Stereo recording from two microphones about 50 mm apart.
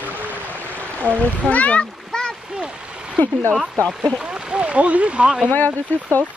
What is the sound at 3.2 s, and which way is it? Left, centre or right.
Speech, left.